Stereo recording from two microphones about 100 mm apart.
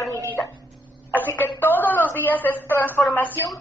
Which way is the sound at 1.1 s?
20° left (ahead or behind).